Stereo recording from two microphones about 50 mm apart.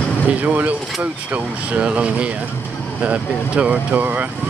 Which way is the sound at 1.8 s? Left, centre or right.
Right.